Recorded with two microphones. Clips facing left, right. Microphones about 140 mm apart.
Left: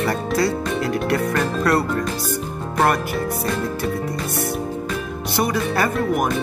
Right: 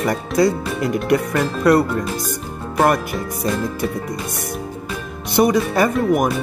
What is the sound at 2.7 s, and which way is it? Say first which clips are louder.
Speech: right 2 dB; 10° right (ahead or behind).